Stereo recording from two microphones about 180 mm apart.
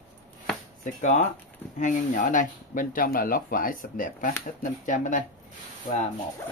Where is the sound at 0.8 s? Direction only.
45° left (ahead or behind).